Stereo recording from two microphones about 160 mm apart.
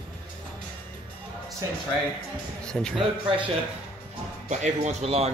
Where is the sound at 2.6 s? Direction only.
5° left (ahead or behind).